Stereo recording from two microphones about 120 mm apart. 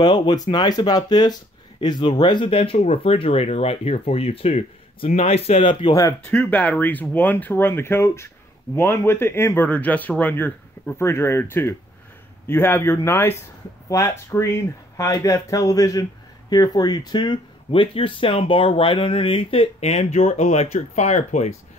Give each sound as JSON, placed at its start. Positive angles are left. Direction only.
{"t": 0.0, "sound": "speech", "side_deg": 35}
{"t": 6.2, "sound": "speech", "side_deg": 15}